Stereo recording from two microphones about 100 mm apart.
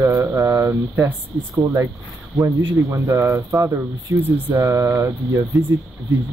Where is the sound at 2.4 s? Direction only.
30° right (ahead or behind).